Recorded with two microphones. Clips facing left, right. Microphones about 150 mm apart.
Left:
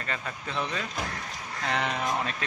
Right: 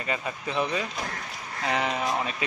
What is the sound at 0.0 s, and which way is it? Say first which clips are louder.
A man's voice: right 4 dB; 10° right (ahead or behind).